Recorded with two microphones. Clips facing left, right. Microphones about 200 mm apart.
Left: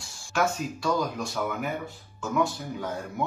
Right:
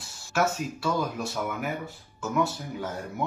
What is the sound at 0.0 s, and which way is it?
Speech, 5° right (ahead or behind).